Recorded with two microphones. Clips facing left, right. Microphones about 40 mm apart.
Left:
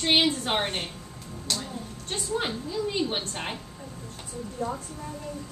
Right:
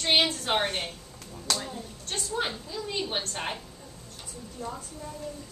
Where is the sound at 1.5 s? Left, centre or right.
Right.